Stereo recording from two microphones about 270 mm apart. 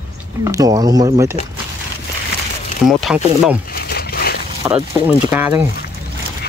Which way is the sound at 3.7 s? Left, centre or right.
Left.